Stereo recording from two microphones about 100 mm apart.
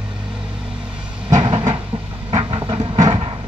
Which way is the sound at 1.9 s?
65° right (ahead or behind).